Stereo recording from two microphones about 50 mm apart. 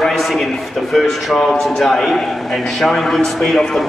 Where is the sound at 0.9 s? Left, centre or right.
Centre.